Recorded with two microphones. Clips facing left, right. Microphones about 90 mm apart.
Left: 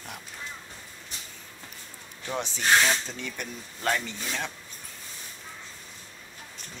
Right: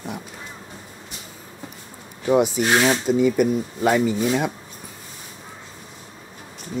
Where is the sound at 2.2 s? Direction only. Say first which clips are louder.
Right 12 dB; 15° right (ahead or behind).